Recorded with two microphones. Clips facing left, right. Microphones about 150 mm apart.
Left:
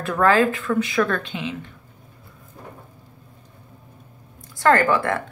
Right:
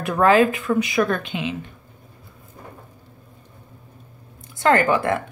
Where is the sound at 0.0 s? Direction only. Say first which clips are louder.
Right 2 dB; 15° right (ahead or behind).